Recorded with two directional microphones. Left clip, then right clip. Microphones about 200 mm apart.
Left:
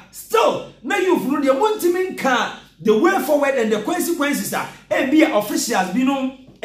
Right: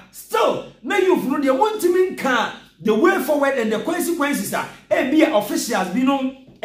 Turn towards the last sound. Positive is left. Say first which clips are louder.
# left 1 dB
turn(degrees=0)  # may be behind; listen again after turning